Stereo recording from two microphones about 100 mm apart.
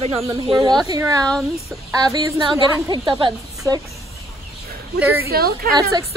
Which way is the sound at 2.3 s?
50° right (ahead or behind).